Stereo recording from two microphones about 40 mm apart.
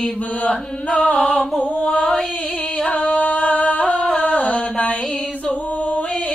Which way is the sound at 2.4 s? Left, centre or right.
Left.